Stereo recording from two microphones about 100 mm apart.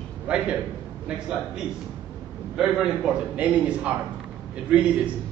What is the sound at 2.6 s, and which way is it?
A man's voice, 5° right (ahead or behind).